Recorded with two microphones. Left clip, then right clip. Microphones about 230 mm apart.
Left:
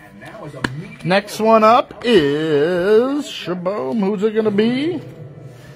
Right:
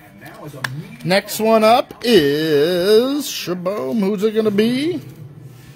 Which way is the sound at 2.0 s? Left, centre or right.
Right.